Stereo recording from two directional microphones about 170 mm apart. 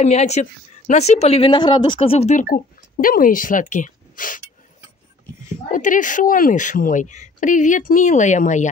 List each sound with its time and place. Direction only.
0.0 s a woman's voice: 40° left (ahead or behind)
2.5 s speech: 55° left (ahead or behind)
5.7 s a woman's voice: 50° left (ahead or behind)